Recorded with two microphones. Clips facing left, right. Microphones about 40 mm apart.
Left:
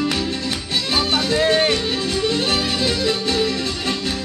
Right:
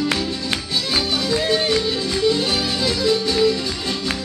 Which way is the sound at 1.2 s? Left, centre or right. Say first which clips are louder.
Left 3 dB; left.